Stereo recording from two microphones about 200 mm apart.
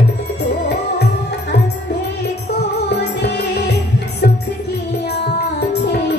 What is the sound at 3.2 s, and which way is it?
Music, 55° left (ahead or behind).